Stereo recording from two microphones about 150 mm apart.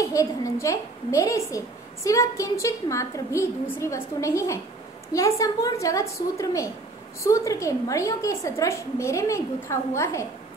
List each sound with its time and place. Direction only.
0.0 s a woman's voice: 20° left (ahead or behind)